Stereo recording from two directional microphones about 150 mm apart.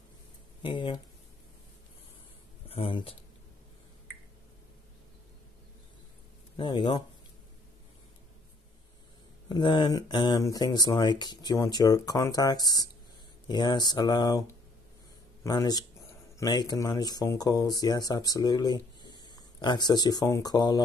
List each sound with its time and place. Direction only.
0.7 s speech: 30° left (ahead or behind)
2.7 s speech: 40° left (ahead or behind)
6.5 s speech: 30° left (ahead or behind)
9.5 s speech: 30° left (ahead or behind)
15.4 s speech: 25° left (ahead or behind)